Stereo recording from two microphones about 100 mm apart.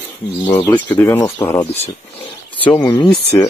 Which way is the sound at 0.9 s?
20° left (ahead or behind).